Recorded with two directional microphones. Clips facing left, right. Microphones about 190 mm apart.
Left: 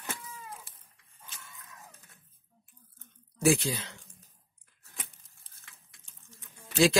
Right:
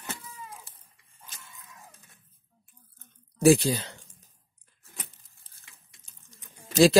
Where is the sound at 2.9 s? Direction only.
40° right (ahead or behind).